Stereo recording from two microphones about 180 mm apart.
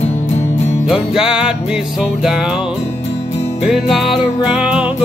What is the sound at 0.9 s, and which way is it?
Music, 5° right (ahead or behind).